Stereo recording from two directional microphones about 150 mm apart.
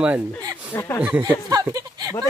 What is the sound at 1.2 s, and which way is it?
Speech, 25° right (ahead or behind).